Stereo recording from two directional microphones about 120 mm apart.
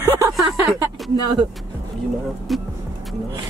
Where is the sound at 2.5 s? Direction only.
Centre (ahead or behind).